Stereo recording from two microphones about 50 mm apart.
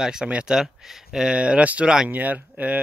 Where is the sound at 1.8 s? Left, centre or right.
Centre.